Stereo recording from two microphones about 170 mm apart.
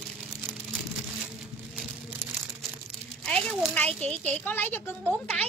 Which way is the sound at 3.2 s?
5° left (ahead or behind).